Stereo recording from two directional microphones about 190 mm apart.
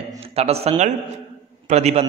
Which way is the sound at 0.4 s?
35° right (ahead or behind).